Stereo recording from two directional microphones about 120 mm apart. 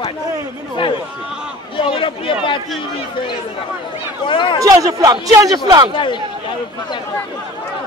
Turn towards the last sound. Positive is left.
turn(degrees=45)  # may be behind; listen again after turning